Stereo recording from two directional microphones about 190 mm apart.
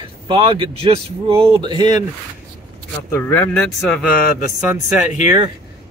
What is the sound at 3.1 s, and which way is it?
Speech, 10° left (ahead or behind).